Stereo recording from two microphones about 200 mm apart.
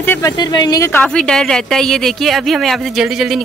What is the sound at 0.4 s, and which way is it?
Speech, 20° left (ahead or behind).